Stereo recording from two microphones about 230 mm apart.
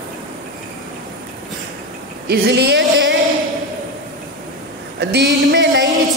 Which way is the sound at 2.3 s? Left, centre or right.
Right.